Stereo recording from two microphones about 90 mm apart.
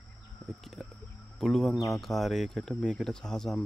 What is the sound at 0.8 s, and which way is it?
Speech, 5° left (ahead or behind).